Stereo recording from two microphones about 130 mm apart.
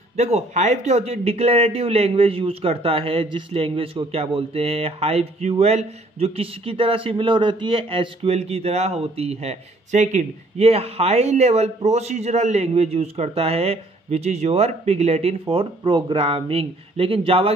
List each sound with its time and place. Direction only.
0.2 s a man's voice: 60° right (ahead or behind)